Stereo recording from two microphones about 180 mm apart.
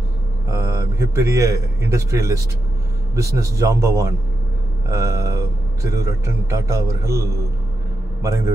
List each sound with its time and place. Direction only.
0.5 s a man's voice: 15° right (ahead or behind)